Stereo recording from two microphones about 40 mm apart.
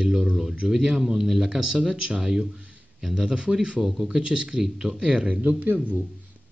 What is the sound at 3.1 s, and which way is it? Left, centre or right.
Speech, right.